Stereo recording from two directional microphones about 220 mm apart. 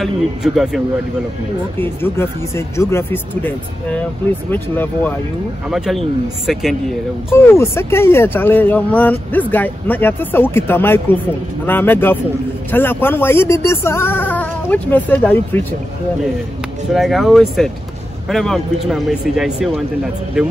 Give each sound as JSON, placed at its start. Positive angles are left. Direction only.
{"t": 0.0, "sound": "speech", "side_deg": 0}
{"t": 1.8, "sound": "speech", "side_deg": 10}
{"t": 7.2, "sound": "speech", "side_deg": 10}
{"t": 16.9, "sound": "speech", "side_deg": 0}